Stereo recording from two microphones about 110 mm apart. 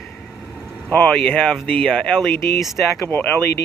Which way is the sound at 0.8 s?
15° left (ahead or behind).